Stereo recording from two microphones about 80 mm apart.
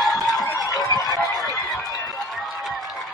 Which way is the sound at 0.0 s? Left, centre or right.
Centre.